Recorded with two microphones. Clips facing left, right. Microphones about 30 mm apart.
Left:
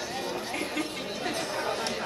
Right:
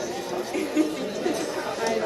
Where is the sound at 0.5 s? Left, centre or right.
Left.